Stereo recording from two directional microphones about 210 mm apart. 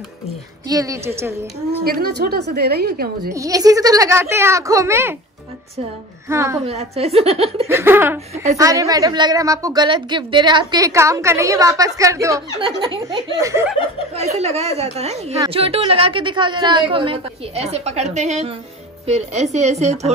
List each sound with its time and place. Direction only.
0.7 s a woman's voice: 15° right (ahead or behind)
1.9 s a woman's voice: 45° right (ahead or behind)
3.3 s a woman's voice: 15° right (ahead or behind)
6.2 s a woman's voice: 15° right (ahead or behind)
6.6 s a woman's voice: 30° right (ahead or behind)
7.6 s a woman's voice: 10° right (ahead or behind)
14.1 s a woman's voice: 30° right (ahead or behind)